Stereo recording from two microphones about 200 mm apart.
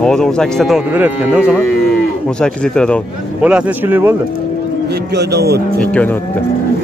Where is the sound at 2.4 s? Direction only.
5° left (ahead or behind).